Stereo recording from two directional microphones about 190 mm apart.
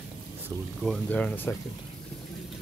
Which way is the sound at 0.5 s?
20° right (ahead or behind).